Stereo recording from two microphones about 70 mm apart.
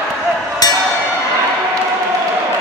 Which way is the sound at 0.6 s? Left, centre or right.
Left.